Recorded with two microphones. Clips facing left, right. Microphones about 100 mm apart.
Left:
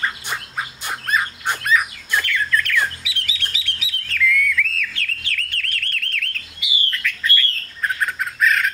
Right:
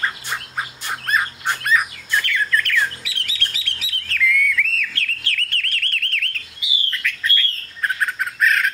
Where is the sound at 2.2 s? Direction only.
Centre (ahead or behind).